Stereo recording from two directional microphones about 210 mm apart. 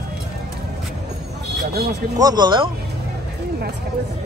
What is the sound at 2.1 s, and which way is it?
Speech, 20° right (ahead or behind).